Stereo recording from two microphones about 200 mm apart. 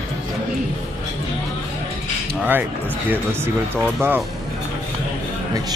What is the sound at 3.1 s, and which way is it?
Speech, 10° right (ahead or behind).